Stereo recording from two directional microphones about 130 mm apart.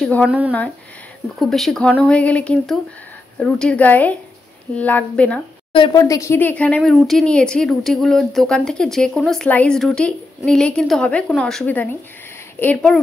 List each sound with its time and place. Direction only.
1.4 s a woman's voice: centre (ahead or behind)
5.7 s a woman's voice: 40° left (ahead or behind)
5.9 s a woman's voice: 25° left (ahead or behind)